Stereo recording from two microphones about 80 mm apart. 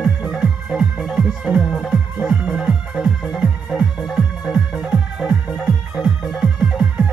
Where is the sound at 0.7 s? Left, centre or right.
Centre.